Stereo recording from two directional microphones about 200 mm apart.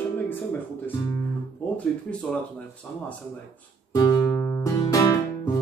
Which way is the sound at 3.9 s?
20° left (ahead or behind).